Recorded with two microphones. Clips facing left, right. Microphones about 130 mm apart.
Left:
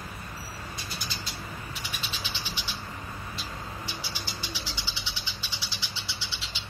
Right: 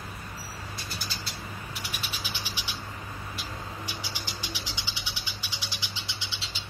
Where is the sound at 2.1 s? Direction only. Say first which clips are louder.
Even; 10° right (ahead or behind).